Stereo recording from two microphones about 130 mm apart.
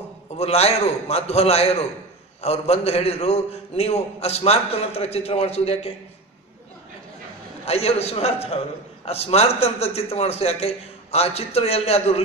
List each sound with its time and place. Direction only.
0.4 s a man's voice: 55° left (ahead or behind)
7.6 s a man's voice: 50° left (ahead or behind)